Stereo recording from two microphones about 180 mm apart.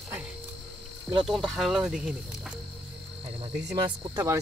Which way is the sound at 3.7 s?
20° right (ahead or behind).